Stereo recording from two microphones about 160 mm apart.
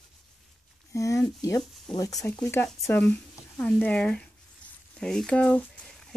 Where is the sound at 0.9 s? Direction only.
20° left (ahead or behind).